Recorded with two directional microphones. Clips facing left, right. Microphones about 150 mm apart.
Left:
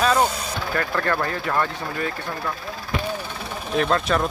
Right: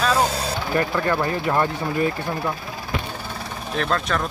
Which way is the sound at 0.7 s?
15° right (ahead or behind).